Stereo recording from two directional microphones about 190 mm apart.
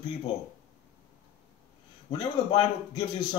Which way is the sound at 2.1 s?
25° left (ahead or behind).